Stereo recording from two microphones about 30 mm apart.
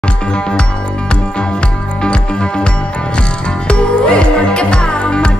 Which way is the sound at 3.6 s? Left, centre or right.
Left.